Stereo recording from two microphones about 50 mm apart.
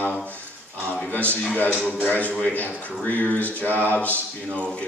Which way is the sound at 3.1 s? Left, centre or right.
Left.